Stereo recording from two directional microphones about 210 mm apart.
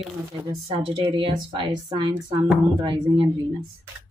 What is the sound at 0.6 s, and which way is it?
A woman's voice, 25° right (ahead or behind).